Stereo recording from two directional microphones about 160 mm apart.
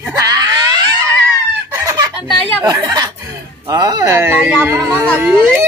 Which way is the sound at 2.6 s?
25° right (ahead or behind).